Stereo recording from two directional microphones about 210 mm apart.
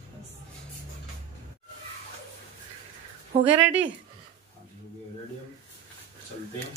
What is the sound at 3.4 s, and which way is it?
Speech, 5° right (ahead or behind).